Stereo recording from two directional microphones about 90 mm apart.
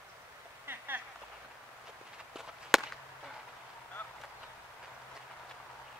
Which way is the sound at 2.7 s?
Centre (ahead or behind).